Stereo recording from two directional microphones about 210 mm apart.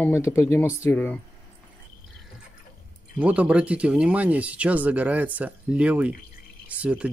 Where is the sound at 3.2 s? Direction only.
5° right (ahead or behind).